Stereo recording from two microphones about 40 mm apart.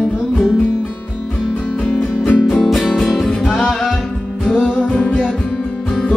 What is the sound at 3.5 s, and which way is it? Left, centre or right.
Music, centre.